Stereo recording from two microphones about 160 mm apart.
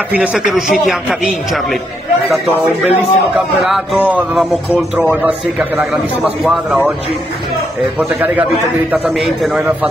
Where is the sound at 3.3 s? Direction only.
Centre (ahead or behind).